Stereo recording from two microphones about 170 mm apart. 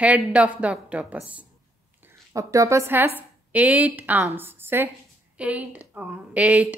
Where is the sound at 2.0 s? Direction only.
20° right (ahead or behind).